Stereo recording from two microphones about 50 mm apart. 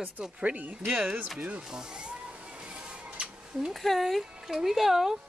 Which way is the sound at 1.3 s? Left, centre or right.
Right.